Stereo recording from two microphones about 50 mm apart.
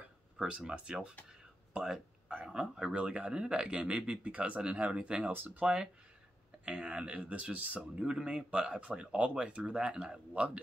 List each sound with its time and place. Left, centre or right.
0.5 s speech: right
1.7 s a sound: centre
2.5 s speech: centre
8.1 s speech: centre